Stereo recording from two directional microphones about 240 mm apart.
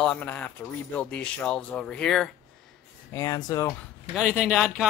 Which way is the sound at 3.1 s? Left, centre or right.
Centre.